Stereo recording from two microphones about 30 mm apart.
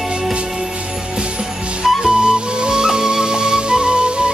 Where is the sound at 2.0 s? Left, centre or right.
Right.